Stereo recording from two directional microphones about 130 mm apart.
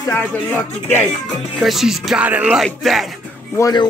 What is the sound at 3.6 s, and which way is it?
Speech, 30° left (ahead or behind).